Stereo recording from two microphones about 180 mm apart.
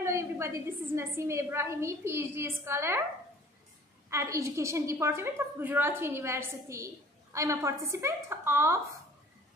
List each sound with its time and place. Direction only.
0.0 s a woman's voice: 15° right (ahead or behind)
4.1 s a woman's voice: 15° right (ahead or behind)